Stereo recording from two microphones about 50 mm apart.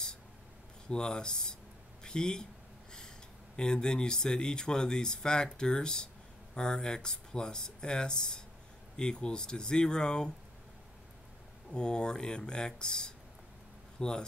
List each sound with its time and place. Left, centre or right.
0.8 s speech: centre
3.5 s speech: centre
11.7 s speech: centre